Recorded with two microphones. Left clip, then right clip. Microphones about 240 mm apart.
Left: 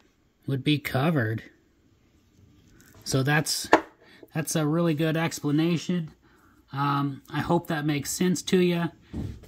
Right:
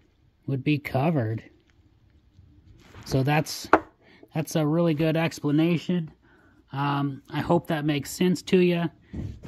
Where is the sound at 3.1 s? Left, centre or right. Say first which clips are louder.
Even; centre.